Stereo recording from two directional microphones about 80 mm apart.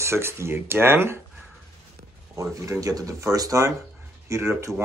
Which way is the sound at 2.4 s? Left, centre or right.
Right.